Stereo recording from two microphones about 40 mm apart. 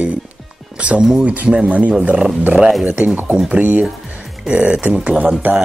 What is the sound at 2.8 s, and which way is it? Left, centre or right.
Speech, right.